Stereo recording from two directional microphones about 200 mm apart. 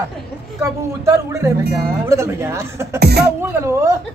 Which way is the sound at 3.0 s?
55° right (ahead or behind).